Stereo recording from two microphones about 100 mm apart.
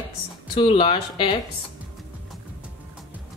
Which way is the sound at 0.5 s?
70° left (ahead or behind).